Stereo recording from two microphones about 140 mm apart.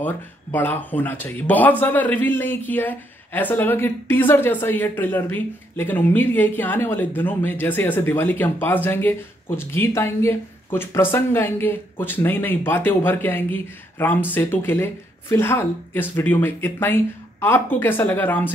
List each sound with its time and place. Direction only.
0.0 s speech: 15° left (ahead or behind)